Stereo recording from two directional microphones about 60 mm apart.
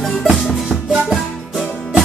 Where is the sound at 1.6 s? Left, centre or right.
Centre.